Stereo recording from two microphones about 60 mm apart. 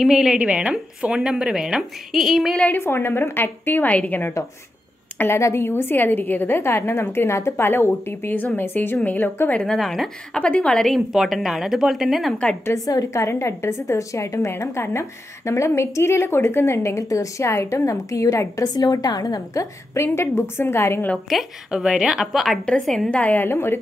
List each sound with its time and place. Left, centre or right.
0.0 s speech: centre
0.4 s speech: centre
2.5 s a woman's voice: left
2.8 s a woman's voice: left
5.2 s a woman's voice: left
9.7 s a woman's voice: centre
10.3 s a woman's voice: centre
10.9 s a woman's voice: centre
12.7 s a woman's voice: left
21.3 s speech: centre
22.7 s a woman's voice: centre
23.1 s a woman's voice: left
23.4 s a woman's voice: left